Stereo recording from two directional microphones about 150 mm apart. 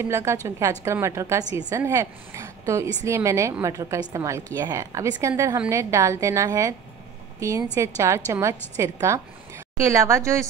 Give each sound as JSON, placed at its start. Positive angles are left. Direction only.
{"t": 0.0, "sound": "a woman's voice", "side_deg": -20}